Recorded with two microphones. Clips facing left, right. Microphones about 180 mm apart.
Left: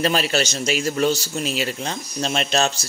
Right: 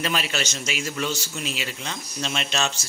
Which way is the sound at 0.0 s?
35° left (ahead or behind).